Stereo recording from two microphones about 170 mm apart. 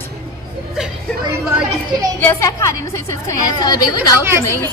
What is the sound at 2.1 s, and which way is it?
A woman's voice, 15° left (ahead or behind).